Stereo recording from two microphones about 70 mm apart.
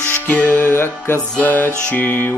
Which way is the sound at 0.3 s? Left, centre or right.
Left.